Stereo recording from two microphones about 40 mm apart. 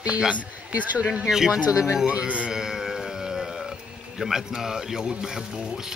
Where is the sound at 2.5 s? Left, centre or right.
Centre.